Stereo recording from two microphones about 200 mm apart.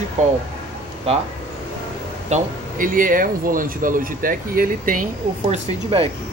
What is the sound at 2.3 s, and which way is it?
Speech, 40° right (ahead or behind).